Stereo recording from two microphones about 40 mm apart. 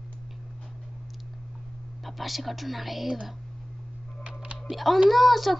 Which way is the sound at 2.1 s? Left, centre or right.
Centre.